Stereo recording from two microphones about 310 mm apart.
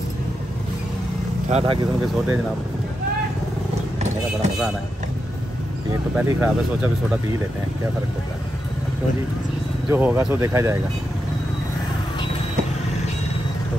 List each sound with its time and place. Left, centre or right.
1.5 s speech: centre
6.1 s speech: centre
9.8 s speech: centre